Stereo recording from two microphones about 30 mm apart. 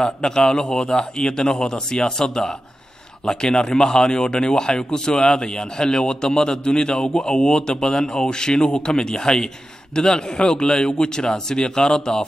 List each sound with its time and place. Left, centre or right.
0.0 s speech: left